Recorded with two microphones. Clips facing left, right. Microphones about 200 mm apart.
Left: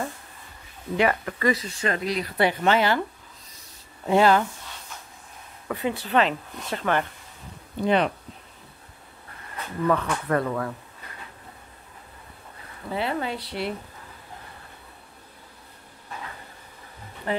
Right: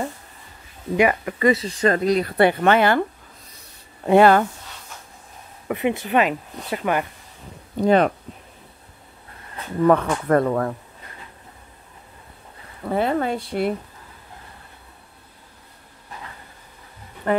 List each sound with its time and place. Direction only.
0.9 s a woman's voice: 10° right (ahead or behind)
1.5 s speech: 30° right (ahead or behind)
1.9 s speech: 40° right (ahead or behind)
4.0 s speech: 60° right (ahead or behind)
5.7 s a woman's voice: 20° right (ahead or behind)
7.7 s speech: 45° right (ahead or behind)
9.8 s speech: 50° right (ahead or behind)
12.8 s speech: 50° right (ahead or behind)
17.3 s speech: 50° right (ahead or behind)